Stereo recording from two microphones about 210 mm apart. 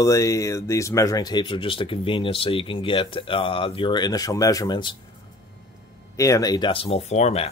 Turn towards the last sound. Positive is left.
turn(degrees=30)  # may be behind; listen again after turning